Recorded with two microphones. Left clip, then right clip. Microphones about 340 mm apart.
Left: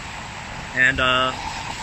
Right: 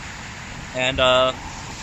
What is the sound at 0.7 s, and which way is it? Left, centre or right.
Speech, centre.